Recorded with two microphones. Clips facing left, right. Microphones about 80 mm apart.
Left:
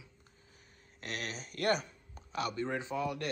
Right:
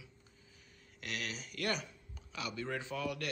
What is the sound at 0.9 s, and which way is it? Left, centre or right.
Speech, left.